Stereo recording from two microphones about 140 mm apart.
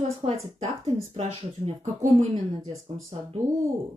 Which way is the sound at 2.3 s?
25° right (ahead or behind).